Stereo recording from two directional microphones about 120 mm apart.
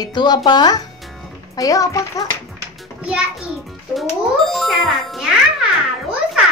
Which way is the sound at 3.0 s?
10° right (ahead or behind).